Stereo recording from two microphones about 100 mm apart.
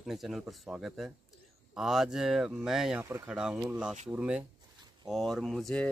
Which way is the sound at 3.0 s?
25° right (ahead or behind).